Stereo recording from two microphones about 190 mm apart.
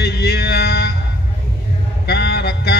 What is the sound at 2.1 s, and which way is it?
Mantra, 55° left (ahead or behind).